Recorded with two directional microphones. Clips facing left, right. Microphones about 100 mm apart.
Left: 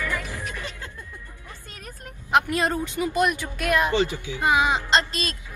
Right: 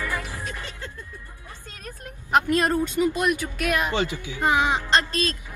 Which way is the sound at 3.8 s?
15° right (ahead or behind).